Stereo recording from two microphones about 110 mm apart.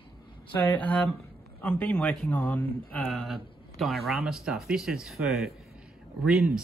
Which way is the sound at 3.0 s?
Centre (ahead or behind).